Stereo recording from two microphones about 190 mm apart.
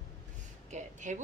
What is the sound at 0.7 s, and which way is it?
Speech, 40° right (ahead or behind).